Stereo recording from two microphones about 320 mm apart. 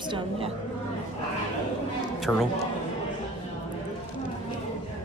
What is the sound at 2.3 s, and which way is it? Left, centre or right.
Speech, centre.